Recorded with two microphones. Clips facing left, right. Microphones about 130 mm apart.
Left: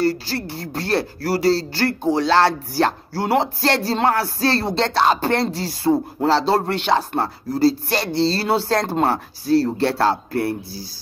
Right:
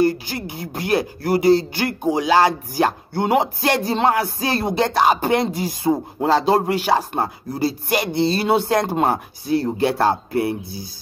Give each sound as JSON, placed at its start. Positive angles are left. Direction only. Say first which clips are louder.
{"t": 0.0, "sound": "speech", "louder": "right 2 dB", "side_deg": -15}